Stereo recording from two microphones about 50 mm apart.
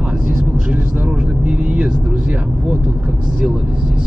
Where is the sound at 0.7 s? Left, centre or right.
Right.